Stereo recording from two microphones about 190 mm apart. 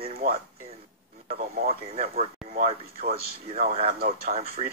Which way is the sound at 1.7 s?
35° right (ahead or behind).